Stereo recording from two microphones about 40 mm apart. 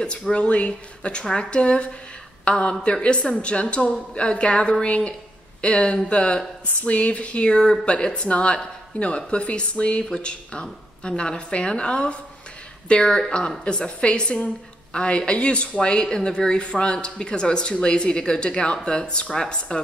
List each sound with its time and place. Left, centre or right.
0.3 s speech: left